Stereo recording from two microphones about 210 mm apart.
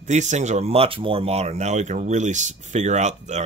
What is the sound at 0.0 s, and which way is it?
Speech, 35° right (ahead or behind).